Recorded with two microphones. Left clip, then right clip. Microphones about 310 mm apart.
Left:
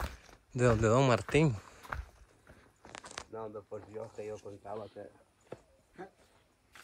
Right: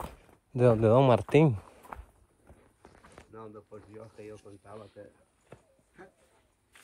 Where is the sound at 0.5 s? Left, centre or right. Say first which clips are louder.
Right 5 dB; centre.